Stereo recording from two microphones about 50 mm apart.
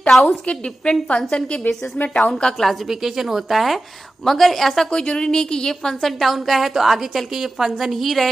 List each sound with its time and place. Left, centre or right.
0.2 s a woman's voice: centre
2.6 s a woman's voice: centre
4.9 s a woman's voice: centre